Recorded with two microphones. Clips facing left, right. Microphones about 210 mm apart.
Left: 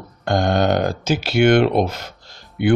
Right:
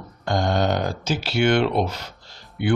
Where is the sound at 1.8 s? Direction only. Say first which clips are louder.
Left 3 dB; 50° left (ahead or behind).